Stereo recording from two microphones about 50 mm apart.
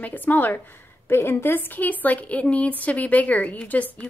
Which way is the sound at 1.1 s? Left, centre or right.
Left.